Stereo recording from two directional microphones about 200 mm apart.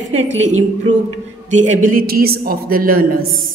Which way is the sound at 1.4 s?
40° right (ahead or behind).